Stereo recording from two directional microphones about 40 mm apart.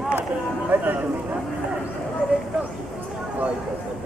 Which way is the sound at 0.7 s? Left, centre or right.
Right.